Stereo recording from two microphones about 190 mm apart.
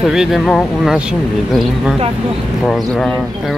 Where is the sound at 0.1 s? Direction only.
Centre (ahead or behind).